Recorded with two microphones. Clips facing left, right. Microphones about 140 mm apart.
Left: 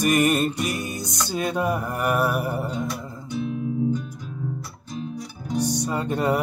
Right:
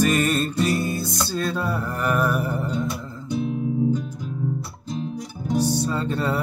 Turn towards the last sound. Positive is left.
turn(degrees=15)  # may be behind; listen again after turning